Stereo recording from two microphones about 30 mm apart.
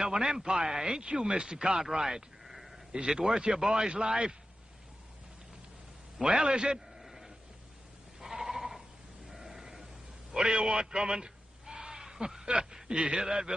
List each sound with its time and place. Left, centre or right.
0.0 s speech: right
2.4 s sheep: centre
2.9 s speech: right
6.2 s speech: right
7.0 s sheep: centre
10.3 s a sound: right
12.8 s a man's voice: right
13.2 s a man's voice: centre